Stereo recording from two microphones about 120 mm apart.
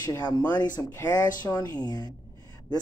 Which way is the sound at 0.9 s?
25° left (ahead or behind).